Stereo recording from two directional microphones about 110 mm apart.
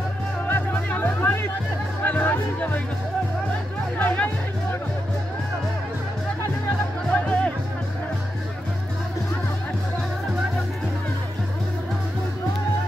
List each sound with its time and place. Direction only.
0.5 s music: 15° left (ahead or behind)
4.0 s music: 15° left (ahead or behind)
7.1 s music: 10° left (ahead or behind)